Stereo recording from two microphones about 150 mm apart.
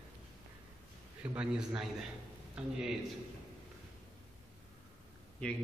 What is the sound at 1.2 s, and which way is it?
Speech, 5° right (ahead or behind).